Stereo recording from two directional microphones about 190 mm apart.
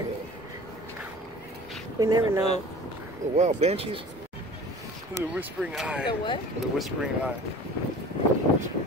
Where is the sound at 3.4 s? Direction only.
35° right (ahead or behind).